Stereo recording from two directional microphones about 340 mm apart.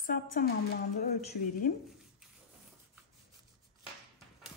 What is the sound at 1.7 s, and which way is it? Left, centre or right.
Speech, left.